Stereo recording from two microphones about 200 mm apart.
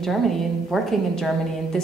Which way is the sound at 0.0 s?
Centre (ahead or behind).